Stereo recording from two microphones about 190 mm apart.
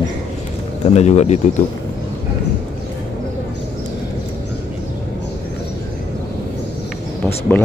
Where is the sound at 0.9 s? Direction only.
35° left (ahead or behind).